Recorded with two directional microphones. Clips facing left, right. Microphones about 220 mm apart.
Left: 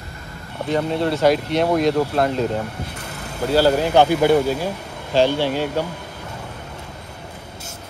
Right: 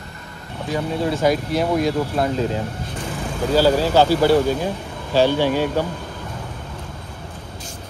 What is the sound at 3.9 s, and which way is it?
Speech, 20° left (ahead or behind).